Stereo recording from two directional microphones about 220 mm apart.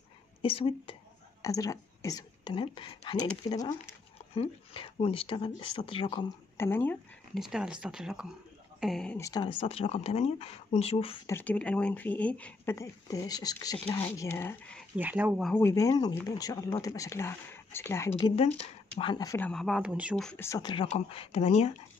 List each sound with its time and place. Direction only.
0.4 s speech: 25° left (ahead or behind)
1.4 s speech: 15° left (ahead or behind)
6.5 s speech: 10° left (ahead or behind)
7.3 s speech: 5° right (ahead or behind)
9.2 s speech: 20° left (ahead or behind)
11.2 s speech: 10° left (ahead or behind)
15.0 s speech: 10° right (ahead or behind)
15.7 s speech: 15° left (ahead or behind)
18.3 s speech: 25° left (ahead or behind)